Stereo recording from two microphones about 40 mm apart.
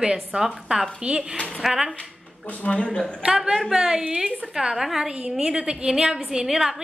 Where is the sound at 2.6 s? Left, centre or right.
Left.